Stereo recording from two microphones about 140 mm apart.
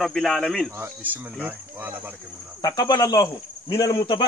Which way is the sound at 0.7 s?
15° right (ahead or behind).